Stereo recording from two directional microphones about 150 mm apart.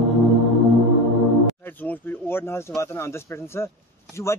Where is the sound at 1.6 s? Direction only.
10° left (ahead or behind).